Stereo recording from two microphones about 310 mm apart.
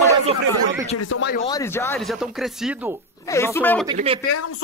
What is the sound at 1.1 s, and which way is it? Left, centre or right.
Speech, left.